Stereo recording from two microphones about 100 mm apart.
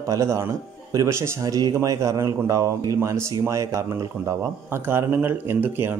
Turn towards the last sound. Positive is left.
turn(degrees=-20)  # may be behind; listen again after turning